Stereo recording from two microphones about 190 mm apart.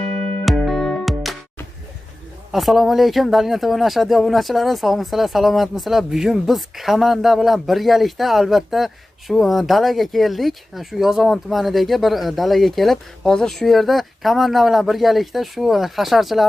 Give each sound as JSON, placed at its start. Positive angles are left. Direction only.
{"t": 0.0, "sound": "music", "side_deg": 5}
{"t": 2.5, "sound": "speech", "side_deg": 0}